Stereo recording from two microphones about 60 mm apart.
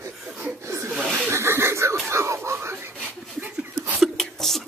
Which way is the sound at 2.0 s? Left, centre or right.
Right.